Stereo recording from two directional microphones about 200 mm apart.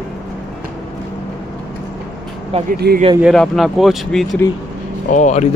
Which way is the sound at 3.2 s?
Centre (ahead or behind).